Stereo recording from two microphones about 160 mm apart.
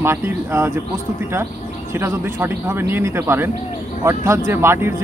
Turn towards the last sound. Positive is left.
turn(degrees=-15)  # may be behind; listen again after turning